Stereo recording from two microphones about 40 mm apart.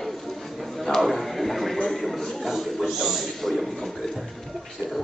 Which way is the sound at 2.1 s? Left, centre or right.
Centre.